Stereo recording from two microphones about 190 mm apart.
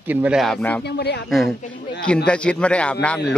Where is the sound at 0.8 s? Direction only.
60° left (ahead or behind).